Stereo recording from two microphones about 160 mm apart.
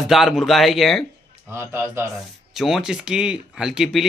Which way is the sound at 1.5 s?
15° right (ahead or behind).